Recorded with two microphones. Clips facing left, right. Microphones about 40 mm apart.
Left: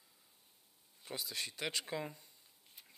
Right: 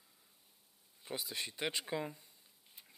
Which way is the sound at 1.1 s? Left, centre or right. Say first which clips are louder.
Right 1 dB; centre.